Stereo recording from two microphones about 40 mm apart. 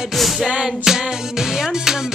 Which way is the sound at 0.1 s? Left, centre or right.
Centre.